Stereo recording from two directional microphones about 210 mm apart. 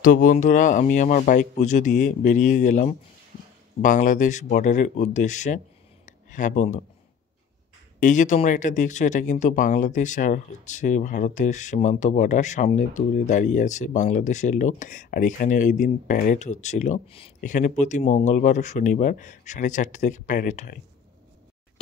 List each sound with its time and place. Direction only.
0.0 s speech: 40° left (ahead or behind)
6.0 s a sound: 40° left (ahead or behind)
8.0 s speech: 35° left (ahead or behind)